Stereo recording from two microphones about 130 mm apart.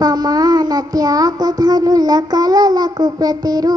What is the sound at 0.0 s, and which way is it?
Child singing, 30° right (ahead or behind).